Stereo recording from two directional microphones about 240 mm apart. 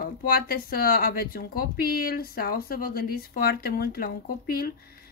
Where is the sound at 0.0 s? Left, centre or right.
Left.